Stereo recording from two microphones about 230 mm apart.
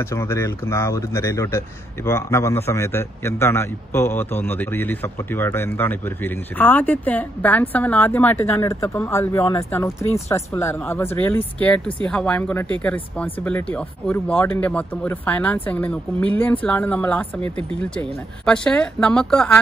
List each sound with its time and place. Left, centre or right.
0.0 s a man's voice: centre
18.4 s a woman's voice: centre